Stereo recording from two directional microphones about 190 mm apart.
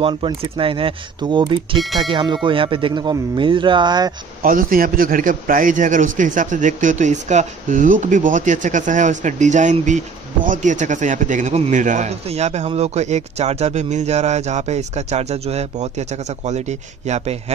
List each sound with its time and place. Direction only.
0.0 s speech: 25° right (ahead or behind)
4.4 s a man's voice: 45° right (ahead or behind)